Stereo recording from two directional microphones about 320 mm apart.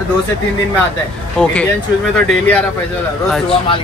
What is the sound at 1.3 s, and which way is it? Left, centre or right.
A man's voice, centre.